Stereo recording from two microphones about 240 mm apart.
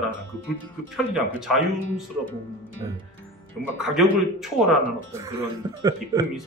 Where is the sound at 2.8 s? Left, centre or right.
Centre.